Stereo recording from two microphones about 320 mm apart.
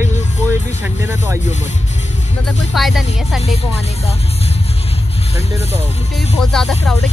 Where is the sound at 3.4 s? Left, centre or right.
Centre.